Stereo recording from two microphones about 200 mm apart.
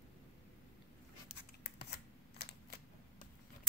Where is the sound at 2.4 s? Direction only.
55° left (ahead or behind).